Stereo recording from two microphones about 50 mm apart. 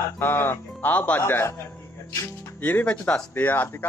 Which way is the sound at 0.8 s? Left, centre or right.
Left.